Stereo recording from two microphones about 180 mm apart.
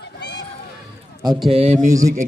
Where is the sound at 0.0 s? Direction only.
70° left (ahead or behind).